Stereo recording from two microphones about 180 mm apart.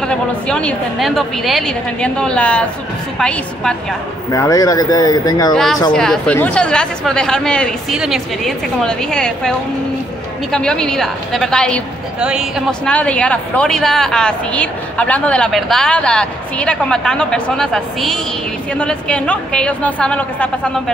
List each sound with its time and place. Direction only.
0.0 s a woman's voice: 5° left (ahead or behind)
4.3 s speech: 20° left (ahead or behind)
5.5 s a woman's voice: centre (ahead or behind)
10.5 s a woman's voice: 5° left (ahead or behind)